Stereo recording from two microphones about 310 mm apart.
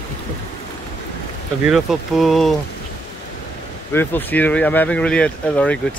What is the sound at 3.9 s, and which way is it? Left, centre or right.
Speech, centre.